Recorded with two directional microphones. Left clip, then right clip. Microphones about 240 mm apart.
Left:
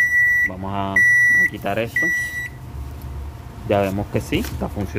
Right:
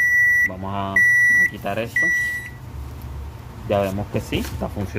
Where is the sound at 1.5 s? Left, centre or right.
Centre.